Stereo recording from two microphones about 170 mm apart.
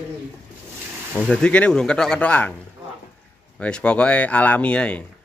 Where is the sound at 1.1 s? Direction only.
5° left (ahead or behind).